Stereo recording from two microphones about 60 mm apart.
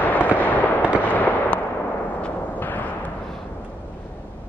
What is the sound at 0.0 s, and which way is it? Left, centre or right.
Fireworks, left.